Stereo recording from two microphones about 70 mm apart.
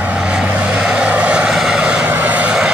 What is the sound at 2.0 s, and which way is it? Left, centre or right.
Vehicle, right.